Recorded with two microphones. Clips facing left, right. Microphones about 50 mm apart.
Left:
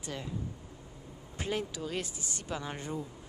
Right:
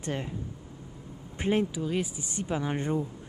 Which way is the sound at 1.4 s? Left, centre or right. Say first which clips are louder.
Right 8 dB; right.